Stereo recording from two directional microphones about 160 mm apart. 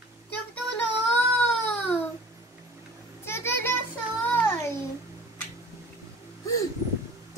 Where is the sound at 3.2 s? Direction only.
15° left (ahead or behind).